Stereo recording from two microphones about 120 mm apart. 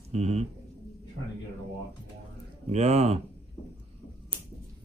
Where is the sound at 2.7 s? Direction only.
65° right (ahead or behind).